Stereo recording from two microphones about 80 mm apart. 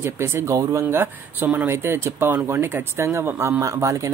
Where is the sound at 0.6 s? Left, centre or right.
Right.